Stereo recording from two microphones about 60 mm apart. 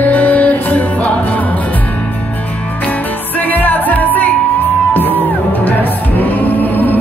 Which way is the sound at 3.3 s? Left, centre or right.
Left.